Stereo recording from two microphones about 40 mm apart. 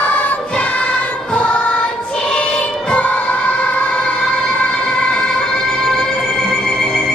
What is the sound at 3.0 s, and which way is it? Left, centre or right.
Music, left.